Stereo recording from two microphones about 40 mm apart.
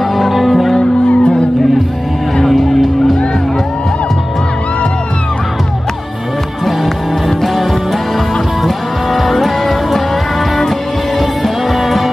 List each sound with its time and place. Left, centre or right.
0.1 s music: centre
0.7 s music: left
2.4 s music: centre
6.6 s music: centre
8.6 s music: centre
11.1 s music: centre